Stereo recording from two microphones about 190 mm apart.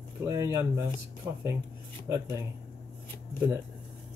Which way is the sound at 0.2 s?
15° right (ahead or behind).